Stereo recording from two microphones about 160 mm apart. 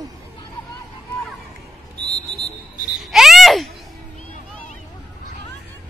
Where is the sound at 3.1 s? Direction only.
Centre (ahead or behind).